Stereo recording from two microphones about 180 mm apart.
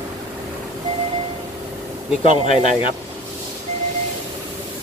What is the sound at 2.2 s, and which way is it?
Speech, 45° right (ahead or behind).